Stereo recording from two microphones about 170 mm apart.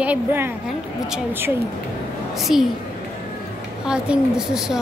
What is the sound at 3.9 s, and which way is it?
Speech, 5° right (ahead or behind).